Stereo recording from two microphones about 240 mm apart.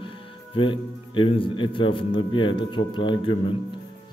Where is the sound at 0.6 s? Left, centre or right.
Left.